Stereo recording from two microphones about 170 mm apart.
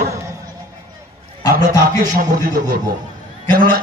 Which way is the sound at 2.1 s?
50° right (ahead or behind).